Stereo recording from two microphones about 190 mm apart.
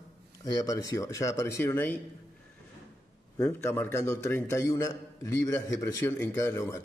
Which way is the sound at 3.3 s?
15° left (ahead or behind).